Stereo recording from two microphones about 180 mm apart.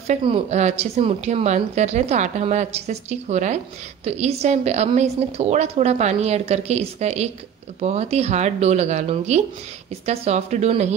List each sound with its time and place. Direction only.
0.0 s a woman's voice: 35° right (ahead or behind)